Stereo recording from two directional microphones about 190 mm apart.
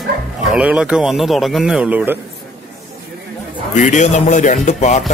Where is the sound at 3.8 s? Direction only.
40° left (ahead or behind).